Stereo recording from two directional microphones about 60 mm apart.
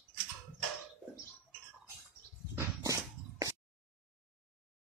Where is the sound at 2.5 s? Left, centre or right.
Right.